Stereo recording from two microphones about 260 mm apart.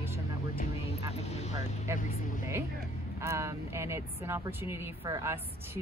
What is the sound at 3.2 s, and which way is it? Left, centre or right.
A woman's voice, centre.